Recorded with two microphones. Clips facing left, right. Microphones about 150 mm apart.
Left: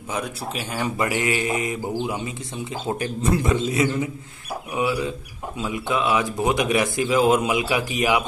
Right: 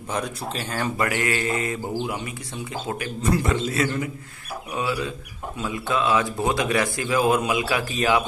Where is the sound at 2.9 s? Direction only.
35° left (ahead or behind).